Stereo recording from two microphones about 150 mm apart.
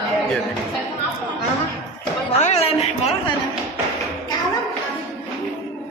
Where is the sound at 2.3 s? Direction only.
45° left (ahead or behind).